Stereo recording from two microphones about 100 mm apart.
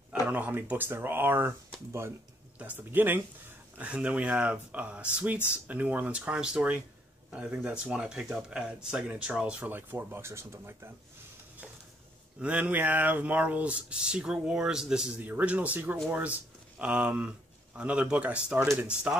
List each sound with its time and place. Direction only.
0.3 s speech: 20° right (ahead or behind)
12.4 s speech: 15° right (ahead or behind)